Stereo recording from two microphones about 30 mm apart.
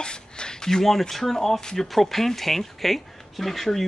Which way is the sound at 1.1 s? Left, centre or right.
Centre.